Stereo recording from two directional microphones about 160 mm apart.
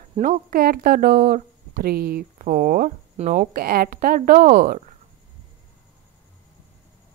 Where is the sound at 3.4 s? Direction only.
65° right (ahead or behind).